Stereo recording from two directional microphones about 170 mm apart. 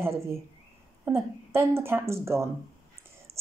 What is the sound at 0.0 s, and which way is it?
Speech, 15° right (ahead or behind).